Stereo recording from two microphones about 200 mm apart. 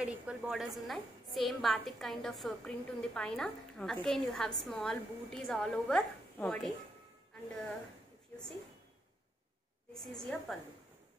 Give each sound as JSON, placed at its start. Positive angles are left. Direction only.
{"t": 0.0, "sound": "a woman's voice", "side_deg": -5}
{"t": 9.9, "sound": "a woman's voice", "side_deg": 0}